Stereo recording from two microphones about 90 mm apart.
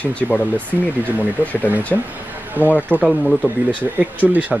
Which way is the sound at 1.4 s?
20° right (ahead or behind).